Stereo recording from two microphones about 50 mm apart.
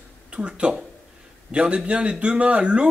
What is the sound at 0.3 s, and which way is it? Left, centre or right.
Speech, centre.